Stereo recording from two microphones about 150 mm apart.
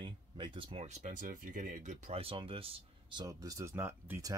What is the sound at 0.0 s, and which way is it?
Speech, 30° right (ahead or behind).